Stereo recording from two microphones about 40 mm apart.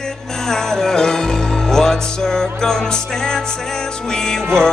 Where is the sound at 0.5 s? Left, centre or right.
Centre.